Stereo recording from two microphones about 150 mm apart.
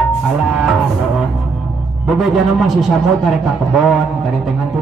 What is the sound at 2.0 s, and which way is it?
A man's voice, centre (ahead or behind).